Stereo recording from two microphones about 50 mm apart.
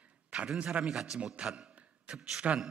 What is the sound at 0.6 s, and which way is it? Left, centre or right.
Speech, centre.